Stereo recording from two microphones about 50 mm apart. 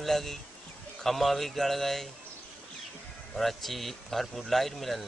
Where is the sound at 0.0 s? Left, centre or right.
Centre.